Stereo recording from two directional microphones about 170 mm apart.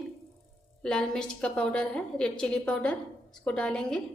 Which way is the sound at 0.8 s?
5° left (ahead or behind).